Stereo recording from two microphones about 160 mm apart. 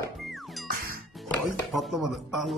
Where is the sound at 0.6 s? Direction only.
65° right (ahead or behind).